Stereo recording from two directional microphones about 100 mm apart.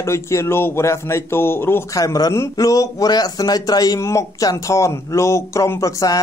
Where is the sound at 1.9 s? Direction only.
35° left (ahead or behind).